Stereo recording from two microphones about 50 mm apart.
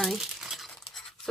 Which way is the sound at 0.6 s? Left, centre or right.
Centre.